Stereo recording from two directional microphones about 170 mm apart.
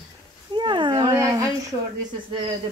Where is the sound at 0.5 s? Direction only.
30° right (ahead or behind).